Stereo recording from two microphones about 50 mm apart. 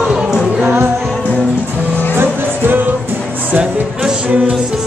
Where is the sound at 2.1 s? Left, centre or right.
Right.